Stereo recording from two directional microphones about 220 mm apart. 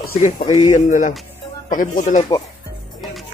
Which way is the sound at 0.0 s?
30° left (ahead or behind).